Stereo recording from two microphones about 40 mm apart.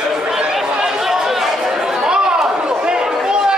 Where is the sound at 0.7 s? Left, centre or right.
Centre.